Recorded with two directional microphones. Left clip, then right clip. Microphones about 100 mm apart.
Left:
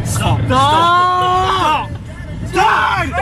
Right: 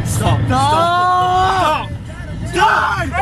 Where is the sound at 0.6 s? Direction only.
20° left (ahead or behind).